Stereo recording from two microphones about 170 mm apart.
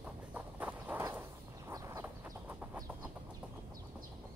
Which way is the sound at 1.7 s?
20° right (ahead or behind).